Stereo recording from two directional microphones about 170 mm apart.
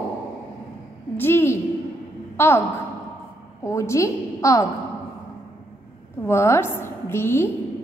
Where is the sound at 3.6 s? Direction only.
15° left (ahead or behind).